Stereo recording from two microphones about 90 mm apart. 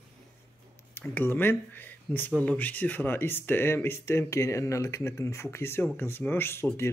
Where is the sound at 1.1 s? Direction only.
25° left (ahead or behind).